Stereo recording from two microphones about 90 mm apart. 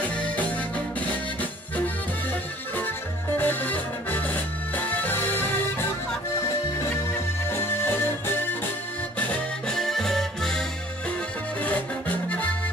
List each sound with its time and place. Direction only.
3.3 s music: 20° left (ahead or behind)
7.5 s music: 25° left (ahead or behind)
9.3 s music: 5° left (ahead or behind)